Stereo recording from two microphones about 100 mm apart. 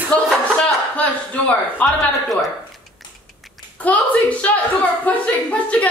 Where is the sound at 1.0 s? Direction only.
15° left (ahead or behind).